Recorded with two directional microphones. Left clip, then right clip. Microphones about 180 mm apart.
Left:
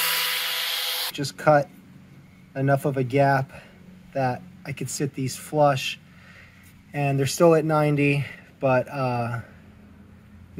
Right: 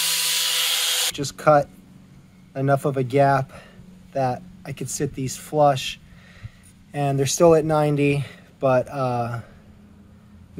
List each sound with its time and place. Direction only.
0.5 s rub: 65° right (ahead or behind)
1.1 s speech: 10° right (ahead or behind)